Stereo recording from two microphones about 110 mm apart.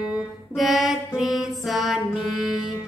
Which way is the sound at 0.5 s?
Centre (ahead or behind).